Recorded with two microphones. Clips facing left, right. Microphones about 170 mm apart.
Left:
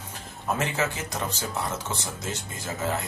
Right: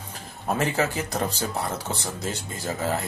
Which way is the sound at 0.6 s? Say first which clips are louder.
Right 5 dB; 35° right (ahead or behind).